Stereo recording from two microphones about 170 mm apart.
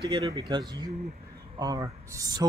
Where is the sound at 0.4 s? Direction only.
25° right (ahead or behind).